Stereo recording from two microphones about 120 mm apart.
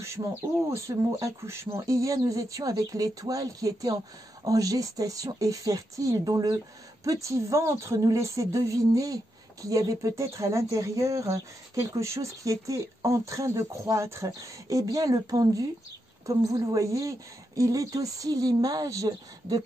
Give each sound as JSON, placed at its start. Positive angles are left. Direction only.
{"t": 0.0, "sound": "a woman's voice", "side_deg": -25}
{"t": 16.6, "sound": "a woman's voice", "side_deg": -25}